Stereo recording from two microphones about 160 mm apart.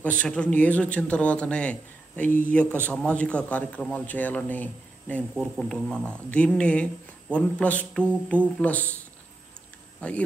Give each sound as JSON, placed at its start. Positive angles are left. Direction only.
{"t": 0.0, "sound": "speech", "side_deg": 10}
{"t": 9.9, "sound": "speech", "side_deg": 10}